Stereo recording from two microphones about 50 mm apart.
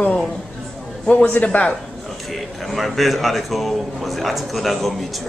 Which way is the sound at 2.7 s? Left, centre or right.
Centre.